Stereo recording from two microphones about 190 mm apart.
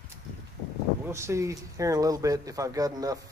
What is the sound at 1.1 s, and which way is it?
A man's voice, 15° right (ahead or behind).